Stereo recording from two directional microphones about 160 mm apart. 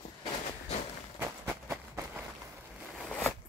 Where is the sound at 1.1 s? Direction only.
15° right (ahead or behind).